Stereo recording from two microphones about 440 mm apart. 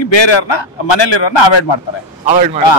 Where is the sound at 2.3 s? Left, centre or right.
Centre.